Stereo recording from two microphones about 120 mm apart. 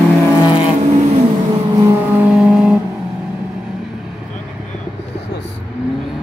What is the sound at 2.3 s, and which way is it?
Vehicle, 5° right (ahead or behind).